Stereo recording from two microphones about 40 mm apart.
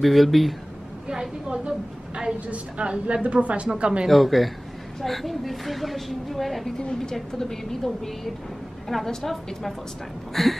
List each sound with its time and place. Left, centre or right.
0.0 s a woman's voice: centre
1.7 s a sound: right
2.4 s a woman's voice: right
4.1 s a woman's voice: centre
6.8 s a woman's voice: left; by 10.5 s centre